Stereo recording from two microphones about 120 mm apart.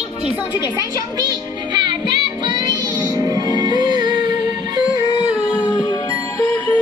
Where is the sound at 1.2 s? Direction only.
35° right (ahead or behind).